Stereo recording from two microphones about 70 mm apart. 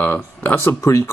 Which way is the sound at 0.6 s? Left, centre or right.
Left.